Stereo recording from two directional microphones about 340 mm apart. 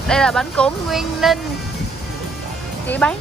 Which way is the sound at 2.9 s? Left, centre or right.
Centre.